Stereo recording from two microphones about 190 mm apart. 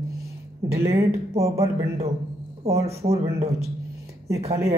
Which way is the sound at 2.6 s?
15° right (ahead or behind).